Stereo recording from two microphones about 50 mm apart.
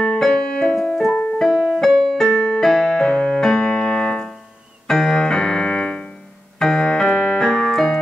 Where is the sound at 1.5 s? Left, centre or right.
Centre.